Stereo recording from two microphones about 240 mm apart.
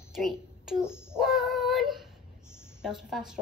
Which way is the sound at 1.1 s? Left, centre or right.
Centre.